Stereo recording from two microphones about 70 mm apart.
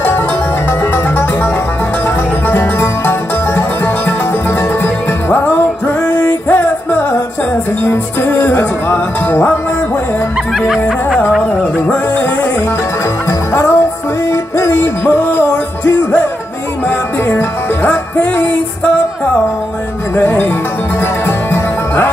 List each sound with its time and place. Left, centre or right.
0.9 s music: left
7.8 s music: left
13.5 s music: left
17.3 s music: left
20.2 s music: left